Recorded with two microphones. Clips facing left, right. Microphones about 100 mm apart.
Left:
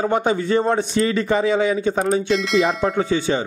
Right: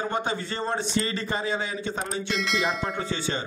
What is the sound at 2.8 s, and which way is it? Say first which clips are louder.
Speech: left 10 dB; 55° left (ahead or behind).